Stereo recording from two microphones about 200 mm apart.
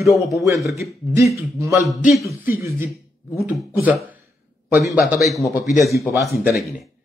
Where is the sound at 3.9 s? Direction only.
5° right (ahead or behind).